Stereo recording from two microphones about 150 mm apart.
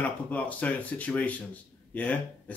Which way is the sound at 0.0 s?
10° left (ahead or behind).